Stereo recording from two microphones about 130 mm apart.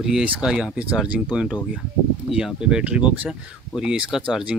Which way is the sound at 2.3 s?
5° right (ahead or behind).